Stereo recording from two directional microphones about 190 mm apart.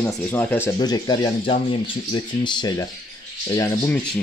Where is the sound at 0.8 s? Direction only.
20° left (ahead or behind).